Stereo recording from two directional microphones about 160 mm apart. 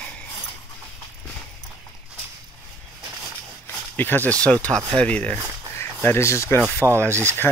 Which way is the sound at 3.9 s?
10° left (ahead or behind).